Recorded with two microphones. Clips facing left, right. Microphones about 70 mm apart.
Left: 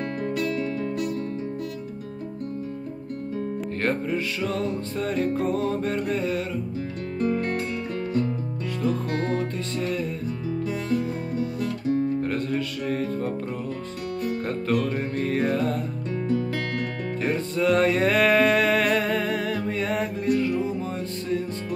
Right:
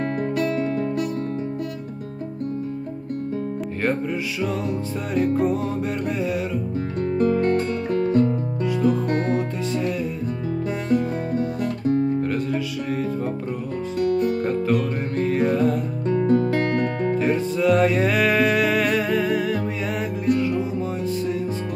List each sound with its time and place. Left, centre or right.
0.2 s music: right
3.8 s music: centre
7.2 s music: right
9.3 s music: centre
10.9 s music: right
12.2 s music: centre
16.1 s music: right
17.2 s music: centre